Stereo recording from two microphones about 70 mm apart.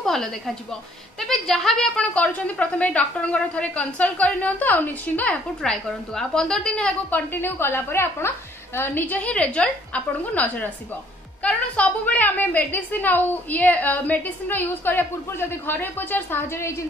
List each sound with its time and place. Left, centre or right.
0.0 s a woman's voice: centre
2.1 s a woman's voice: left
5.6 s a woman's voice: centre
7.1 s a woman's voice: left